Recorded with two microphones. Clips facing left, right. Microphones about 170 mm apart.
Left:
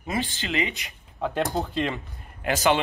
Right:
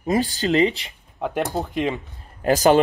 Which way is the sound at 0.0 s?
40° right (ahead or behind).